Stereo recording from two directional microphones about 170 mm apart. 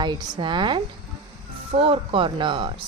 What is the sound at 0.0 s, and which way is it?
Speech, 25° right (ahead or behind).